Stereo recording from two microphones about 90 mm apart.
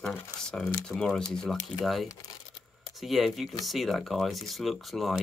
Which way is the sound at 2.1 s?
45° left (ahead or behind).